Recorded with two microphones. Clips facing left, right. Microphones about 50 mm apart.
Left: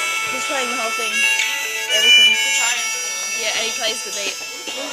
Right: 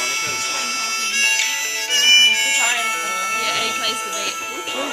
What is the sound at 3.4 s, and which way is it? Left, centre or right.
Speech, centre.